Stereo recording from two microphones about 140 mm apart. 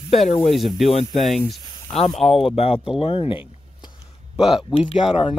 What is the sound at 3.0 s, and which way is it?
Speech, 35° left (ahead or behind).